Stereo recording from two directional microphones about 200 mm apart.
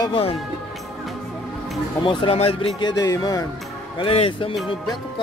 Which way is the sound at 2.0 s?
30° left (ahead or behind).